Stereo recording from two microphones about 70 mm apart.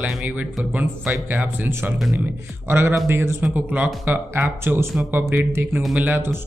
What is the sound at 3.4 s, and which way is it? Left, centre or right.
Speech, right.